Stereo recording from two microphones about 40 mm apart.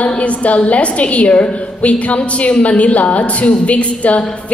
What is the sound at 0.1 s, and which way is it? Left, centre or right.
A woman's voice, left.